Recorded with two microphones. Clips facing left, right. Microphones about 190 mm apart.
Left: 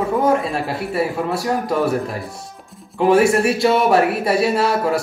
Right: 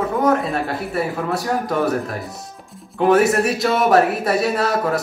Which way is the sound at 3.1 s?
30° left (ahead or behind).